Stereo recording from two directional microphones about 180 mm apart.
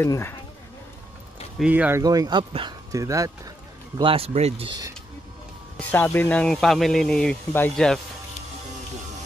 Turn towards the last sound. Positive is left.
turn(degrees=5)  # may be behind; listen again after turning